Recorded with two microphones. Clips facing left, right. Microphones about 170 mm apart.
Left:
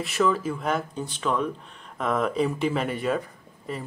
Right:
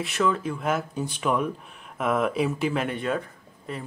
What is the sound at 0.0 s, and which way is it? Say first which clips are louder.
Speech: left 1 dB; centre (ahead or behind).